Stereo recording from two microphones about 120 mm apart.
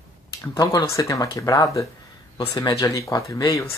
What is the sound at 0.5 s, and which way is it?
Speech, 30° left (ahead or behind).